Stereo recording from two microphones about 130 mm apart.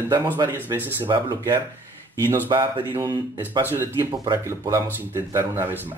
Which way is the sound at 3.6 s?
15° right (ahead or behind).